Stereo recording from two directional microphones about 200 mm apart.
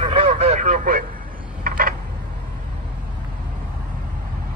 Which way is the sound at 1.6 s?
45° right (ahead or behind).